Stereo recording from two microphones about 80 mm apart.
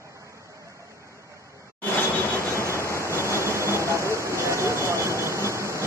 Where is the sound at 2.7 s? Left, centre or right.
Left.